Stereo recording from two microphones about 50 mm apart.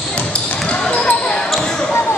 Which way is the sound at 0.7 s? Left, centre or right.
Left.